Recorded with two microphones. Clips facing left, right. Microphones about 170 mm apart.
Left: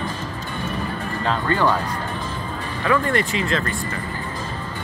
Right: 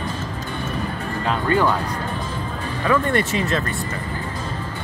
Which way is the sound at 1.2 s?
15° right (ahead or behind).